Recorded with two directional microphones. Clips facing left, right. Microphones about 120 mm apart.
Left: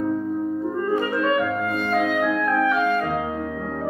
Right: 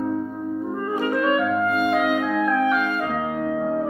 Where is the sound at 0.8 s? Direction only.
10° right (ahead or behind).